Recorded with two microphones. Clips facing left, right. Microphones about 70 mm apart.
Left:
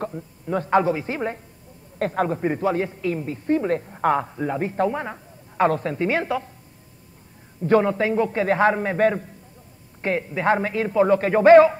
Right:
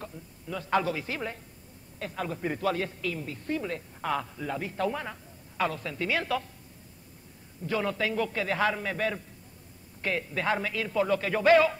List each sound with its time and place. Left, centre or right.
0.0 s a sound: left
0.7 s a man's voice: left
2.0 s a man's voice: left
2.2 s a woman's voice: left
7.8 s a woman's voice: left
10.0 s a woman's voice: left